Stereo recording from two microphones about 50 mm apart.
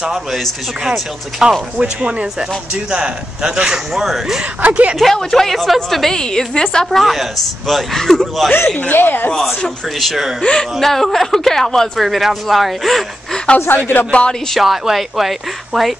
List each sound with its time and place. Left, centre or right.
0.1 s speech: centre
1.4 s speech: centre
4.0 s speech: centre
4.6 s speech: right
4.9 s speech: centre
6.1 s a woman's voice: centre
7.0 s speech: centre
8.7 s speech: left
9.9 s speech: centre
10.4 s a woman's voice: centre
13.7 s speech: left
14.6 s speech: centre